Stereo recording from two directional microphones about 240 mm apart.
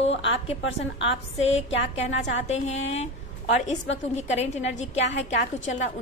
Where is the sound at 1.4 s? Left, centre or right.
Left.